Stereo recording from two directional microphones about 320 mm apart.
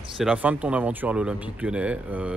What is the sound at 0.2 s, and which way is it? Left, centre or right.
Speech, centre.